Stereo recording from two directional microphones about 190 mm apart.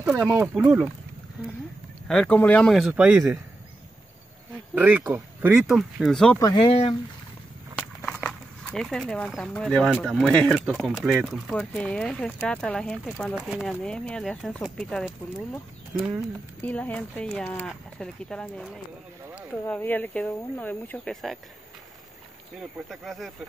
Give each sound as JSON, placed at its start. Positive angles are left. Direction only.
{"t": 0.3, "sound": "speech", "side_deg": -5}
{"t": 2.0, "sound": "speech", "side_deg": 5}
{"t": 4.7, "sound": "speech", "side_deg": -10}
{"t": 6.4, "sound": "speech", "side_deg": 20}
{"t": 8.0, "sound": "bird", "side_deg": 0}
{"t": 9.9, "sound": "speech", "side_deg": 0}
{"t": 16.6, "sound": "speech", "side_deg": 10}
{"t": 22.8, "sound": "speech", "side_deg": 0}